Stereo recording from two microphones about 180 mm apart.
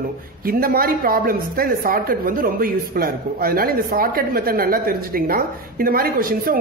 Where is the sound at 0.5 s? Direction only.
55° right (ahead or behind).